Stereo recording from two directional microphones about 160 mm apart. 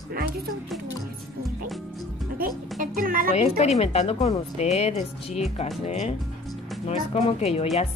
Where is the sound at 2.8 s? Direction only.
60° right (ahead or behind).